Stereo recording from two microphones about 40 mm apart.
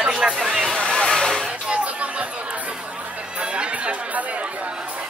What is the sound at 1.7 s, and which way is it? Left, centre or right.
Chatter, right.